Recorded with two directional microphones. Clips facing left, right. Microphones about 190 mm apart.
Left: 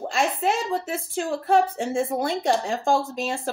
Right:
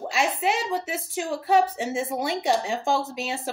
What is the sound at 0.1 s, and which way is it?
A woman's voice, 5° right (ahead or behind).